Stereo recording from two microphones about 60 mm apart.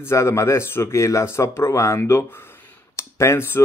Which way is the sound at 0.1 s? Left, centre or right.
Left.